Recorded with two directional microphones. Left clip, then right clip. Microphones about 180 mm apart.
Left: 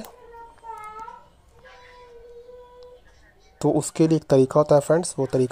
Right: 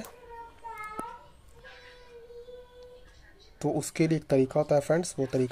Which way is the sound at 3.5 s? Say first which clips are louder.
Left 8 dB; 15° left (ahead or behind).